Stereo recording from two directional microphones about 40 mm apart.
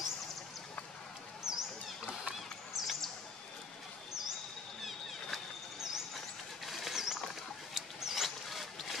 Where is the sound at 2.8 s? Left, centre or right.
Centre.